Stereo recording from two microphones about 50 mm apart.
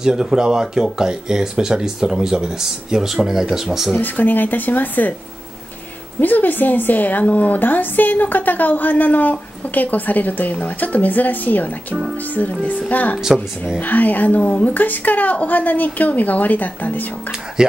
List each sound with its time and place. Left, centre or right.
0.0 s speech: centre
4.0 s a woman's voice: left
6.2 s a woman's voice: left
13.2 s speech: centre
13.7 s a woman's voice: left
17.6 s speech: centre